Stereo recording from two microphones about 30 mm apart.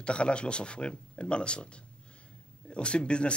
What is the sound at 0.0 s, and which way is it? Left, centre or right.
Speech, left.